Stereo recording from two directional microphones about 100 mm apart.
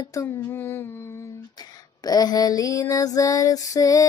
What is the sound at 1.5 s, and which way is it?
Female singing, 40° left (ahead or behind).